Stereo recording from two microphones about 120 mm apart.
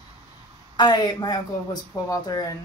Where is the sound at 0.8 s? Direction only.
35° left (ahead or behind).